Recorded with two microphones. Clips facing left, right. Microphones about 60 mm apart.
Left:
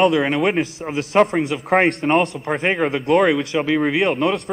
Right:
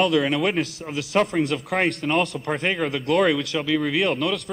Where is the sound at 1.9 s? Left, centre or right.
Left.